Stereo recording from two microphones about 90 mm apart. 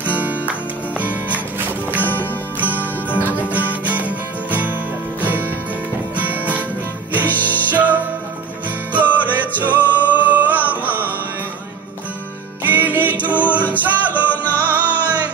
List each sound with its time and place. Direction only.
0.0 s music: 20° right (ahead or behind)
2.0 s music: 20° left (ahead or behind)
3.3 s music: 15° right (ahead or behind)
12.6 s music: 20° right (ahead or behind)